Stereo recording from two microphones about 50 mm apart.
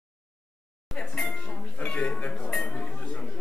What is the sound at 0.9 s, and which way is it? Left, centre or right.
Music, centre.